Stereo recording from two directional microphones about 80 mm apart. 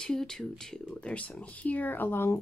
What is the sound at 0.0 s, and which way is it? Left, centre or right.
A woman's voice, centre.